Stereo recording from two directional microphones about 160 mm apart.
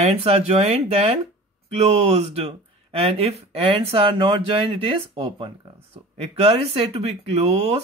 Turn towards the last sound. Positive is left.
turn(degrees=-40)  # may be behind; listen again after turning